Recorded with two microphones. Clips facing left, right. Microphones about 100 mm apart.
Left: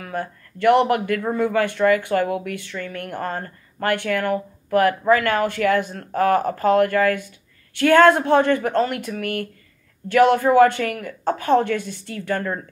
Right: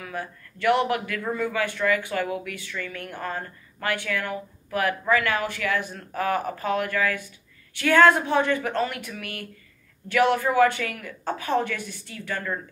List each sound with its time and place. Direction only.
0.0 s a woman's voice: 40° left (ahead or behind)